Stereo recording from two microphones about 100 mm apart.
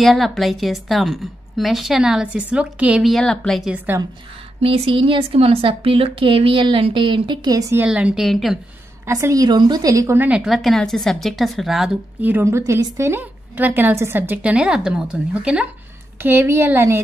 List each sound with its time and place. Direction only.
0.0 s a woman's voice: centre (ahead or behind)
3.0 s a woman's voice: centre (ahead or behind)
3.7 s a woman's voice: 20° right (ahead or behind)
4.6 s speech: 75° right (ahead or behind); by 7.5 s 55° right (ahead or behind)
7.8 s a woman's voice: 10° right (ahead or behind)
9.0 s a woman's voice: 30° right (ahead or behind)
10.1 s a woman's voice: 15° right (ahead or behind)
10.4 s a woman's voice: centre (ahead or behind)
12.2 s a woman's voice: 20° right (ahead or behind)
16.2 s a woman's voice: 25° right (ahead or behind)